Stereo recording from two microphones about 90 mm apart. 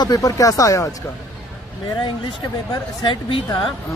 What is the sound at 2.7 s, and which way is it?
Speech, 50° left (ahead or behind).